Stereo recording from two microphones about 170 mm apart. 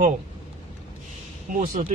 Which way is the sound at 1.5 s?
50° right (ahead or behind).